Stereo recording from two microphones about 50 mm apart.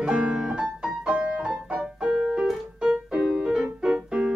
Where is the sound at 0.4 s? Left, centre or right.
Centre.